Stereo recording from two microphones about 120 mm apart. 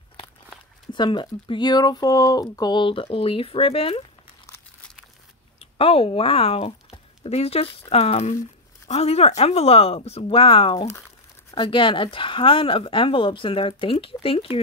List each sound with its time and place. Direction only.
0.9 s speech: 40° left (ahead or behind)
5.6 s speech: 55° left (ahead or behind)